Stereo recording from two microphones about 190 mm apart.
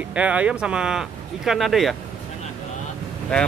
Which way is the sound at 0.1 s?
5° right (ahead or behind).